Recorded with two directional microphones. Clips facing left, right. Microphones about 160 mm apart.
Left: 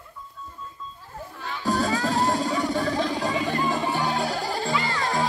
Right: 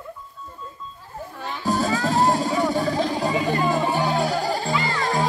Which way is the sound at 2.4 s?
5° right (ahead or behind).